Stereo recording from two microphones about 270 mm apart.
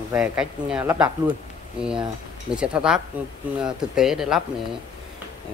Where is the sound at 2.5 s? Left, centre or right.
Centre.